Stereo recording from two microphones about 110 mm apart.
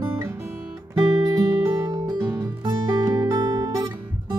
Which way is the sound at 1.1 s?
40° right (ahead or behind).